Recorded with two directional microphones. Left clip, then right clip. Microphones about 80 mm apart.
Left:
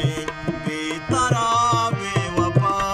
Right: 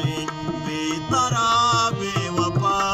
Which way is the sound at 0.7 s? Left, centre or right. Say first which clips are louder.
Right 1 dB; centre.